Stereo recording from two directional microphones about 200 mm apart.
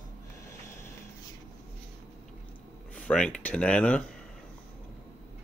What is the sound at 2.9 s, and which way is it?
Speech, 5° left (ahead or behind).